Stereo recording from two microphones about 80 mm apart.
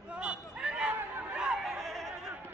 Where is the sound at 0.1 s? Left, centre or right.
Centre.